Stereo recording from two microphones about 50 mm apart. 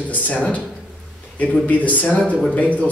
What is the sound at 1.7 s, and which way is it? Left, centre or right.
A man's voice, left.